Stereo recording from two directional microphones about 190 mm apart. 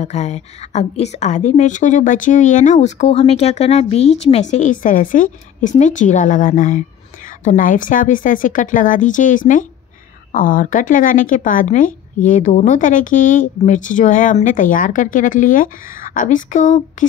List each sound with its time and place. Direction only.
0.0 s a woman's voice: 35° left (ahead or behind)